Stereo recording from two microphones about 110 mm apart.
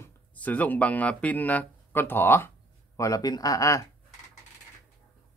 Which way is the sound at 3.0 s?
35° left (ahead or behind).